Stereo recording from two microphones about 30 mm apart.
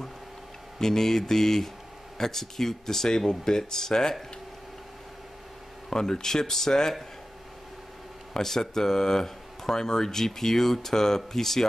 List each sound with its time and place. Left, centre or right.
0.7 s speech: centre
5.9 s speech: centre
8.3 s speech: centre